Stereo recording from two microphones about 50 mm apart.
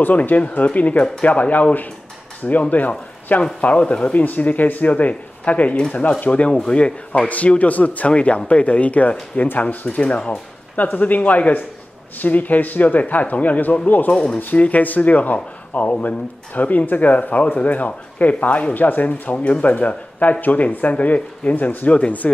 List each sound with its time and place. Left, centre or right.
0.0 s speech: left
3.3 s speech: left
3.6 s speech: left
10.9 s speech: left
14.1 s speech: centre
14.5 s speech: left
19.3 s speech: left